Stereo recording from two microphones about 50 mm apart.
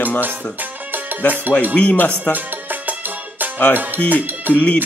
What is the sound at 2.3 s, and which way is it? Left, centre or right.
Music, right.